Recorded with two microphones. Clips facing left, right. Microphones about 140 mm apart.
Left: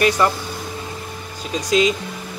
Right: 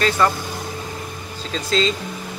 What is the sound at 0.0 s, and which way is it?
Speech, 15° left (ahead or behind).